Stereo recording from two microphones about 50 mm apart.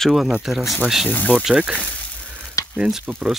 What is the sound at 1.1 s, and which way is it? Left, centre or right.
Speech, left.